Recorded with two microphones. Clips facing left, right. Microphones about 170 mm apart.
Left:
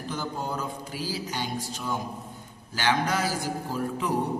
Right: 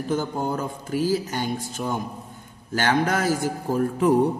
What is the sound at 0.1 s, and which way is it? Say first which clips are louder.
A man's voice: right 7 dB; 50° right (ahead or behind).